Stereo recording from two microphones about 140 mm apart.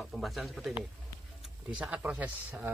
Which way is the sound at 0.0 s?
Centre (ahead or behind).